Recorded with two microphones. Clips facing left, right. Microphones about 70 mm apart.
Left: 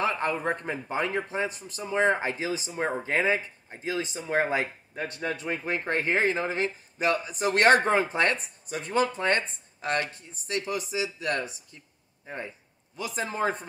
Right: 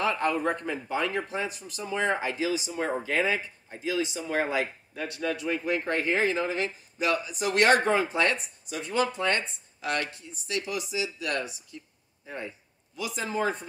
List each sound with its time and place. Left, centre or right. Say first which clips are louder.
0.0 s speech: right 1 dB; left